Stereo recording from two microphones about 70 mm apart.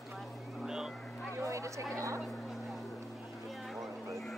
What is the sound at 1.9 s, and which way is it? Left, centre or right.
Vehicle, right.